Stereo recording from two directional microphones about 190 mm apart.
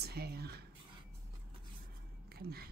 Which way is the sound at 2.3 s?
55° right (ahead or behind).